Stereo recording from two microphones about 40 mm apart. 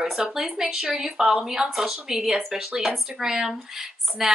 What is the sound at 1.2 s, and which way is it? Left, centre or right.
Speech, right.